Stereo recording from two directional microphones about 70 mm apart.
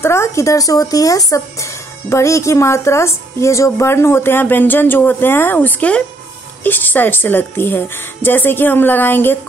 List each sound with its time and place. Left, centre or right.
0.0 s a woman's voice: left